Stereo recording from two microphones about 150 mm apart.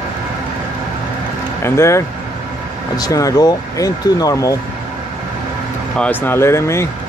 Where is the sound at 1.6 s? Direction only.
15° left (ahead or behind).